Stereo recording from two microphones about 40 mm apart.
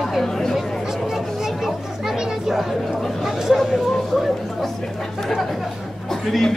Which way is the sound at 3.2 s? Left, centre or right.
Centre.